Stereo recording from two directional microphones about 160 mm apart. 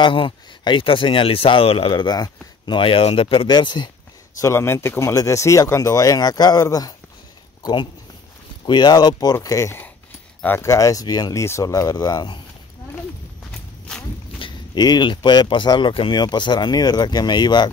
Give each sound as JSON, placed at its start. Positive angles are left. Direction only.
{"t": 0.0, "sound": "speech", "side_deg": 30}
{"t": 4.4, "sound": "speech", "side_deg": 15}
{"t": 13.5, "sound": "horse", "side_deg": 5}
{"t": 14.4, "sound": "speech", "side_deg": 25}